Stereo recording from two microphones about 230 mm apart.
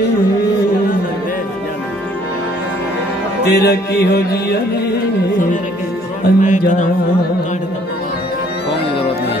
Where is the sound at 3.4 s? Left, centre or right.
Left.